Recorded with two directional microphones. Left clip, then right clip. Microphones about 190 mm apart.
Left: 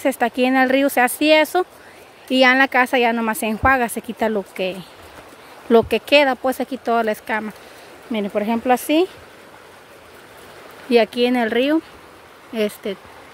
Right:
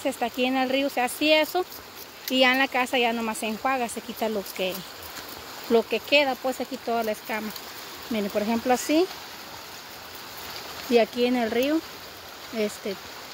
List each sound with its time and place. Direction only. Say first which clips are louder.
0.0 s speech: left 8 dB; 40° left (ahead or behind)
10.9 s speech: left 6 dB; 30° left (ahead or behind)